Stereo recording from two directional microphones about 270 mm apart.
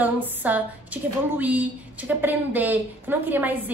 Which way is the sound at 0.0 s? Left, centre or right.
Centre.